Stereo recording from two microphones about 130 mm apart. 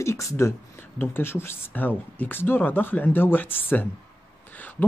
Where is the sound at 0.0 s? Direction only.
20° left (ahead or behind).